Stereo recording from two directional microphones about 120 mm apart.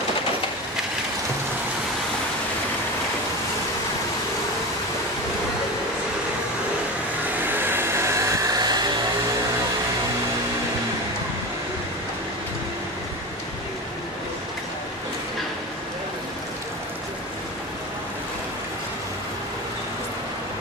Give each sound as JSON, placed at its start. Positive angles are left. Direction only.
{"t": 7.4, "sound": "hair dryer", "side_deg": -15}